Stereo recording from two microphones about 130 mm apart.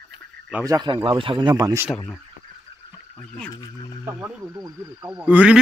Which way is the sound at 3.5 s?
30° left (ahead or behind).